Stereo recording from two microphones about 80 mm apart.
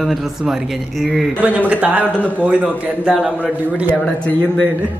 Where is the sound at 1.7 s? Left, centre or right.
Centre.